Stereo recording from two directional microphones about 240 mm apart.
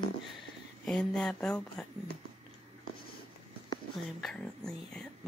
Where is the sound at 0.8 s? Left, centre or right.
Centre.